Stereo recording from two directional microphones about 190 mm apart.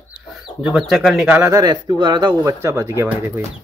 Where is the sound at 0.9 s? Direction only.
Centre (ahead or behind).